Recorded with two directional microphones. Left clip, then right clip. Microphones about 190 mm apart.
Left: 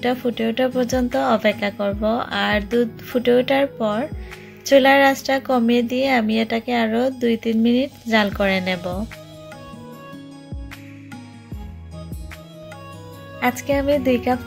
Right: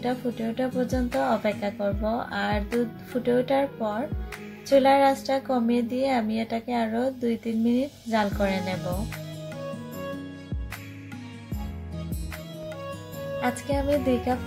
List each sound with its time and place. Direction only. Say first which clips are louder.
0.0 s speech: left 8 dB; 30° left (ahead or behind)
9.7 s music: right 3 dB; centre (ahead or behind)
13.4 s speech: left 8 dB; 25° left (ahead or behind)